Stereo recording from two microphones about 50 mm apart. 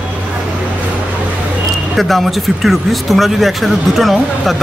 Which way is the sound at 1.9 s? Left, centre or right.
Centre.